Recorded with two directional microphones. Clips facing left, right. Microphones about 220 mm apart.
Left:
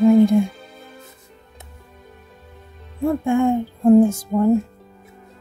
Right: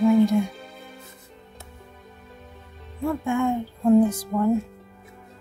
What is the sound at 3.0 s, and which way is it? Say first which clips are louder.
Music: left 6 dB; 30° left (ahead or behind).